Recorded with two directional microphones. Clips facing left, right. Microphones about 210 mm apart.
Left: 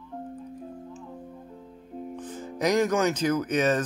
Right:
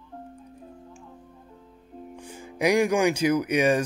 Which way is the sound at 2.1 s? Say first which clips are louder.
Right 1 dB; 10° right (ahead or behind).